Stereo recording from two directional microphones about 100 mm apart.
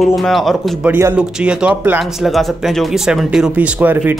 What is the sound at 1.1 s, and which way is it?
Speech, 10° right (ahead or behind).